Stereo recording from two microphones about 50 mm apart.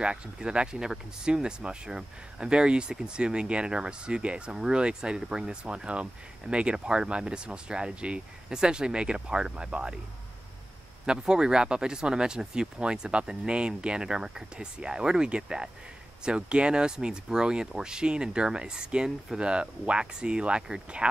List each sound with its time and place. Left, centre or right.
0.0 s speech: centre
11.1 s speech: centre